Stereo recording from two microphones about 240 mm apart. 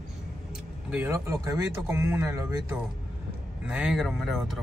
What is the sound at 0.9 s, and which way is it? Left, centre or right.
Speech, centre.